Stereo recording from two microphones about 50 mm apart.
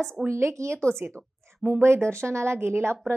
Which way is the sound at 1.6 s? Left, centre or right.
Right.